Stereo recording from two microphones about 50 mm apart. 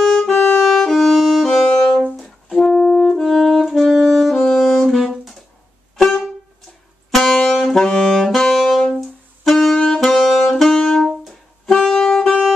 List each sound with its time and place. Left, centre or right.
0.0 s music: centre
2.1 s brass instrument: centre
2.7 s brass instrument: left
3.2 s saxophone: centre
5.9 s music: centre
7.5 s saxophone: centre